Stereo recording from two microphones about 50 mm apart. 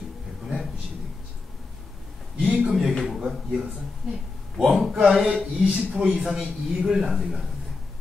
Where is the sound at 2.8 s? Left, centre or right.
Centre.